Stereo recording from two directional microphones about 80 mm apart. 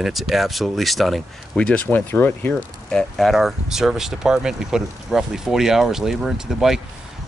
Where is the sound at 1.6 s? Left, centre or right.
Centre.